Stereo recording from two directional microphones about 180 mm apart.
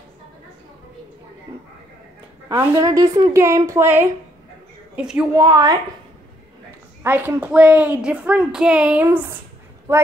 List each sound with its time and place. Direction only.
2.4 s a woman's voice: 15° right (ahead or behind)
5.4 s a woman's voice: 20° right (ahead or behind)
7.0 s a woman's voice: 10° right (ahead or behind)